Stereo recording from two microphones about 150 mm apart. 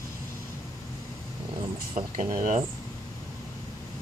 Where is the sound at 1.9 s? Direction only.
55° right (ahead or behind).